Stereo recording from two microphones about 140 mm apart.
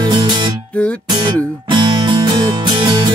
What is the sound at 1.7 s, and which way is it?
Music, 35° right (ahead or behind).